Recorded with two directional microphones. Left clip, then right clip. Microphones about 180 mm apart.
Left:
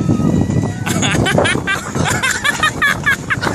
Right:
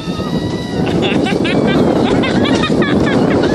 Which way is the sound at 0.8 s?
15° left (ahead or behind).